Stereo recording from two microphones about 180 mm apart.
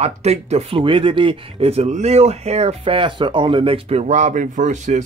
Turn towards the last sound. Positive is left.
turn(degrees=-40)  # may be behind; listen again after turning